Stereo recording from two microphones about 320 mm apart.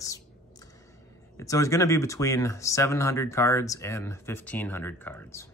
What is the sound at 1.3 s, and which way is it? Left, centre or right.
Speech, centre.